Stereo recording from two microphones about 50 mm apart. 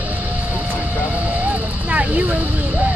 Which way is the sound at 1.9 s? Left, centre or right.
Right.